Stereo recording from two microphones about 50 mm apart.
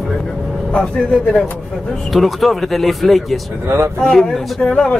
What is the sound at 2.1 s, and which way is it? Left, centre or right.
Speech, centre.